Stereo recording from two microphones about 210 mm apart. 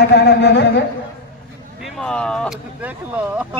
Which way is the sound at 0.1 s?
55° left (ahead or behind).